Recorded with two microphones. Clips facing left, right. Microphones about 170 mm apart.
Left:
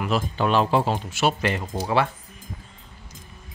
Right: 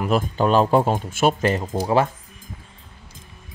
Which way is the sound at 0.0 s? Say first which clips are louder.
Right 4 dB; 40° right (ahead or behind).